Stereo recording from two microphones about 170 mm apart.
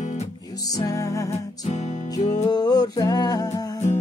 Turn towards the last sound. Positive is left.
turn(degrees=20)  # may be behind; listen again after turning